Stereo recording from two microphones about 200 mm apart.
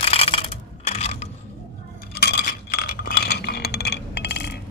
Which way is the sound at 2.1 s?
55° left (ahead or behind).